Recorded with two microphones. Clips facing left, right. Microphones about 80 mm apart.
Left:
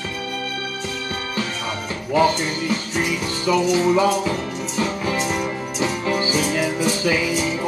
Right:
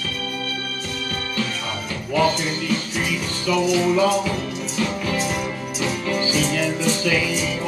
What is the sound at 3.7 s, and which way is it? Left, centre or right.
Music, left.